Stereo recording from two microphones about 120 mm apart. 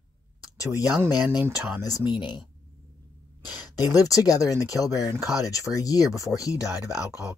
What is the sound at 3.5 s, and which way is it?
Speech, 30° left (ahead or behind).